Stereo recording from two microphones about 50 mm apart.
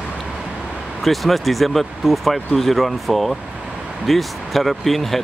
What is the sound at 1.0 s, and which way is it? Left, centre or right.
Speech, centre.